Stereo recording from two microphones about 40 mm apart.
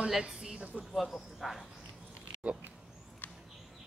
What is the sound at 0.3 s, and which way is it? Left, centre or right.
Speech, centre.